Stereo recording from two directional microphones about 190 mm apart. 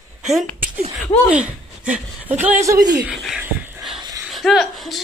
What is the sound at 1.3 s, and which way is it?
Speech, 5° right (ahead or behind).